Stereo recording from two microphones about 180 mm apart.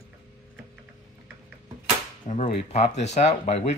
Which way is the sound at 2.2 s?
40° left (ahead or behind).